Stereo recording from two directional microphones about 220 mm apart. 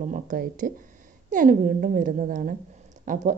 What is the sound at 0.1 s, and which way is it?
A woman's voice, 35° right (ahead or behind).